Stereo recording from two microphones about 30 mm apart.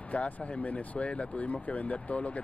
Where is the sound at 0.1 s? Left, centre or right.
Left.